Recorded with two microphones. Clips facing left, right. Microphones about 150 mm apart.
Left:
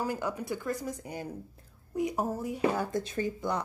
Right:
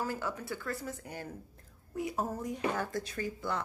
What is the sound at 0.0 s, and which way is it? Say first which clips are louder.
A child's voice: left 3 dB; 15° left (ahead or behind).